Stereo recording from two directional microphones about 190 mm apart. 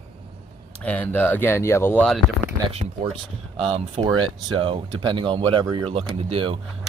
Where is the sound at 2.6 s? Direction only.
30° right (ahead or behind).